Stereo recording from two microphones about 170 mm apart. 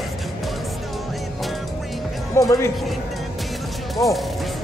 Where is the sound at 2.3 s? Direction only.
20° left (ahead or behind).